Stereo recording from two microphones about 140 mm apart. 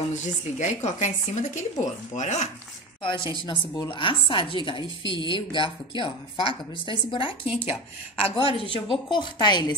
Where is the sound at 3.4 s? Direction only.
35° left (ahead or behind).